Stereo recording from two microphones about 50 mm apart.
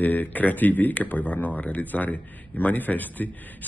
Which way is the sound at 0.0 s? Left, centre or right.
Left.